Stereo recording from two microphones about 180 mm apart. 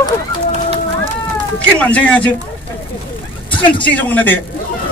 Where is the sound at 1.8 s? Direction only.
5° left (ahead or behind).